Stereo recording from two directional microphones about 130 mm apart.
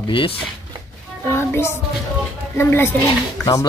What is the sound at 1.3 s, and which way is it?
Speech, 20° left (ahead or behind).